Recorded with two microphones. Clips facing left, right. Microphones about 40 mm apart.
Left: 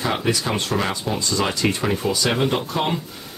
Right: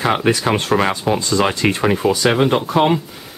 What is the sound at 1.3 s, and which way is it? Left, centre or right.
Speech, right.